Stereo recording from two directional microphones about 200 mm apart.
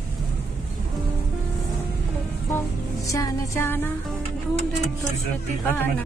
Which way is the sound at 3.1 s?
15° left (ahead or behind).